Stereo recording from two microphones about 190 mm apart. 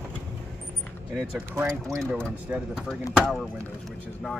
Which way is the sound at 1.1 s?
5° right (ahead or behind).